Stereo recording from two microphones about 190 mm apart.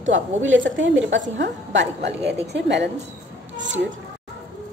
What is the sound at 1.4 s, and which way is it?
A woman's voice, 65° right (ahead or behind).